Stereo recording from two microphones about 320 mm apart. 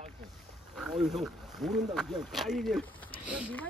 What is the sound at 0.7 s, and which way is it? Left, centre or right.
Speech, centre.